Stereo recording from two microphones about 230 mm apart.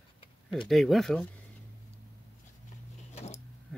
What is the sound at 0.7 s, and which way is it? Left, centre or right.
Speech, centre.